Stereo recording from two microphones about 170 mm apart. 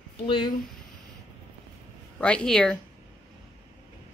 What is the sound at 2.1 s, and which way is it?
Speech, 5° left (ahead or behind).